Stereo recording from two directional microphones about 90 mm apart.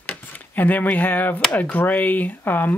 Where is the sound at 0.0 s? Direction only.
20° left (ahead or behind).